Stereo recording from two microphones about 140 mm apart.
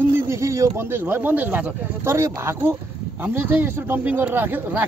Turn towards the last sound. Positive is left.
turn(degrees=-15)  # may be behind; listen again after turning